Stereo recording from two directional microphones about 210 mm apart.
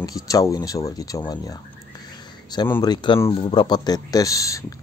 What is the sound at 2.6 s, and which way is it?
Speech, 10° left (ahead or behind).